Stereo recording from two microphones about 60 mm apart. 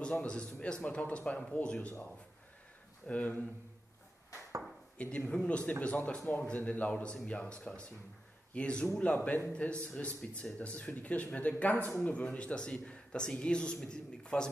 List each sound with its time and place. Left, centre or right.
0.0 s a man's voice: centre
3.1 s speech: left
4.9 s speech: left
8.5 s a man's voice: centre